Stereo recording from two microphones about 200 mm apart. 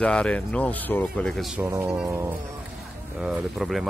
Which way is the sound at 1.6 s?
10° right (ahead or behind).